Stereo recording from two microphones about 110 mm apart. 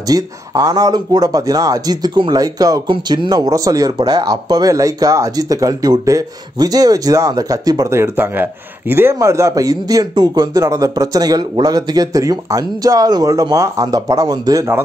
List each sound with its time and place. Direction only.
0.1 s speech: 35° right (ahead or behind)